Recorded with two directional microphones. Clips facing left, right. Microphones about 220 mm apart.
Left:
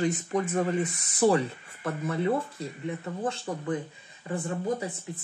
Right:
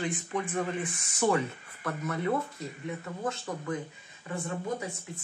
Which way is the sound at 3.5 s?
30° left (ahead or behind).